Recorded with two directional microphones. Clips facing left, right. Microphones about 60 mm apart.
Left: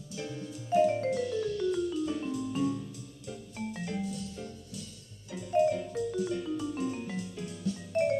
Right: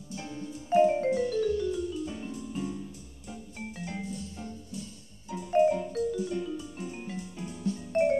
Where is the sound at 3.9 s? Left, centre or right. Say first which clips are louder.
Left 2 dB; centre.